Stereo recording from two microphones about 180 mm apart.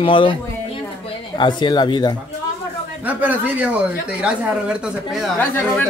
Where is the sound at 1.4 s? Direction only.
25° left (ahead or behind).